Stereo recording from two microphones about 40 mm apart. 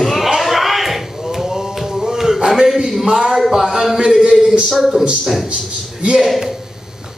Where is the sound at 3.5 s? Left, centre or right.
Centre.